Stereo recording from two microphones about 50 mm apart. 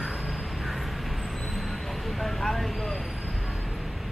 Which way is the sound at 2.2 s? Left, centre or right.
Centre.